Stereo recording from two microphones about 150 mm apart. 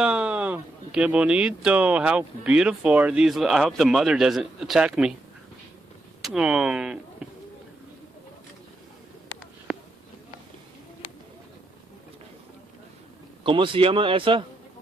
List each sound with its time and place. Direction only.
0.0 s speech: 5° right (ahead or behind)
6.2 s speech: 5° right (ahead or behind)
13.4 s a man's voice: 35° right (ahead or behind)